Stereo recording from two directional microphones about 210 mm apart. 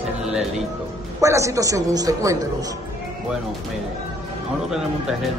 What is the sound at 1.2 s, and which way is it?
A woman's voice, 15° right (ahead or behind).